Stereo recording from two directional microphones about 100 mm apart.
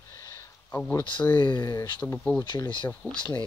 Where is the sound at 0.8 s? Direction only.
15° left (ahead or behind).